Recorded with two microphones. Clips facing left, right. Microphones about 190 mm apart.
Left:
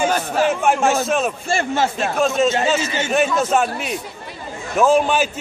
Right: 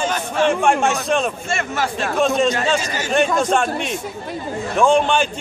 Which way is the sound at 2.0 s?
Centre (ahead or behind).